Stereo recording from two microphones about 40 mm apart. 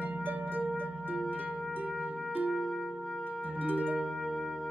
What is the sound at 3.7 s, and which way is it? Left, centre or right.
Music, right.